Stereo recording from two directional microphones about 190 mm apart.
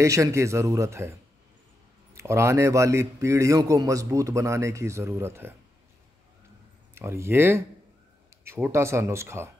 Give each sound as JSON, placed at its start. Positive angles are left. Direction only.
{"t": 0.0, "sound": "a man's voice", "side_deg": -15}
{"t": 2.1, "sound": "a man's voice", "side_deg": -15}
{"t": 7.0, "sound": "a man's voice", "side_deg": -15}